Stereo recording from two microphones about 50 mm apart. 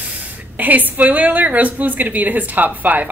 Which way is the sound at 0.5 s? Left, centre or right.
Right.